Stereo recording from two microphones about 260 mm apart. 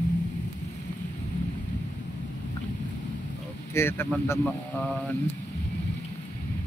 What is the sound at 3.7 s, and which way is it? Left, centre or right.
Speech, centre.